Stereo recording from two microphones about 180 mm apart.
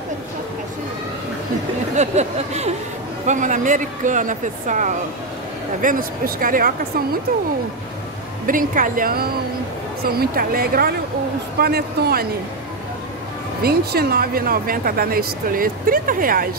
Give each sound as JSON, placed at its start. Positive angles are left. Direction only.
{"t": 2.0, "sound": "a sound", "side_deg": -40}
{"t": 3.3, "sound": "speech", "side_deg": -45}
{"t": 8.5, "sound": "a woman's voice", "side_deg": -50}
{"t": 13.6, "sound": "speech", "side_deg": -60}